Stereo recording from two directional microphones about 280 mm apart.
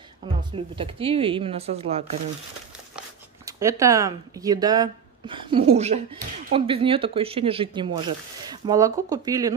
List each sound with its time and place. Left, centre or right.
0.2 s a sound: centre
0.7 s speech: centre
3.4 s speech: centre